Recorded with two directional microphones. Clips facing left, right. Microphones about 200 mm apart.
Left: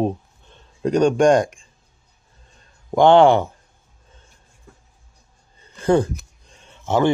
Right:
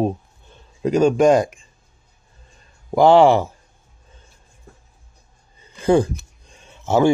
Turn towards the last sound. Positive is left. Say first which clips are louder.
# right 2 dB
turn(degrees=-10)  # may be behind; listen again after turning